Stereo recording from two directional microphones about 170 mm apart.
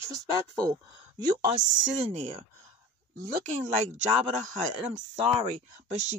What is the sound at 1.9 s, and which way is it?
Speech, 35° right (ahead or behind).